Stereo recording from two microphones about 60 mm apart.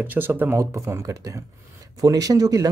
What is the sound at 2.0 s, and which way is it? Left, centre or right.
Speech, right.